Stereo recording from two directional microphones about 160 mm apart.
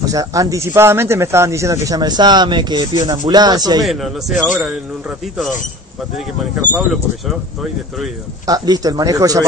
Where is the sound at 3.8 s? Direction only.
Centre (ahead or behind).